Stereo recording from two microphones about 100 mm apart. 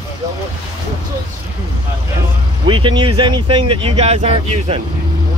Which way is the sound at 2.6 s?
55° right (ahead or behind).